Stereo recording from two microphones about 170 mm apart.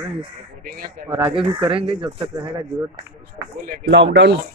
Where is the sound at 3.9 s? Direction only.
90° right.